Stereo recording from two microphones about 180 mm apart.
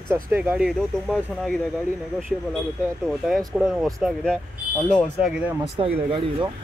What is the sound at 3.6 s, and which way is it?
Speech, 5° right (ahead or behind).